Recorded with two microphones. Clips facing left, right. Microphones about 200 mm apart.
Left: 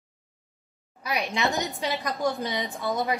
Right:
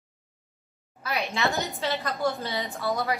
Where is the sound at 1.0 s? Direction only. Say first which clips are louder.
Left 1 dB; 15° left (ahead or behind).